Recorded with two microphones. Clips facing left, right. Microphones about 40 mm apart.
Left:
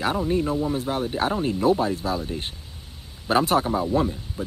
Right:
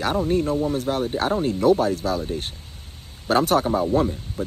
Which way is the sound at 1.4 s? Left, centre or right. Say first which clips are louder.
Right 3 dB; left.